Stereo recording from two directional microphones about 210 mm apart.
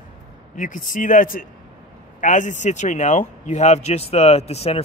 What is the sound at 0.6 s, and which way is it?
Speech, 40° left (ahead or behind).